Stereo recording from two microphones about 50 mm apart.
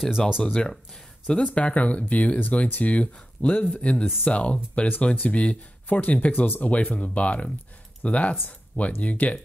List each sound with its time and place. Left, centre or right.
0.4 s speech: centre
4.8 s speech: left
8.5 s a sound: left
9.0 s speech: left